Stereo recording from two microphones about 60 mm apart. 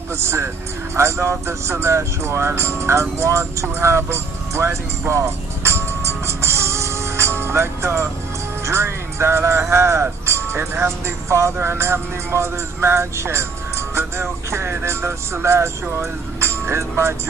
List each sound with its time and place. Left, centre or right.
0.1 s speech: right
3.6 s music: right
8.6 s speech: right
10.2 s music: right
11.1 s speech: right